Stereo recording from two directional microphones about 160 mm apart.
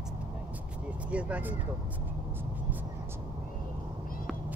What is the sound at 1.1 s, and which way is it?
Speech, 10° right (ahead or behind).